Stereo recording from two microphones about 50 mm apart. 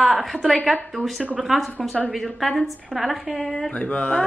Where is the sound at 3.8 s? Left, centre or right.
Left.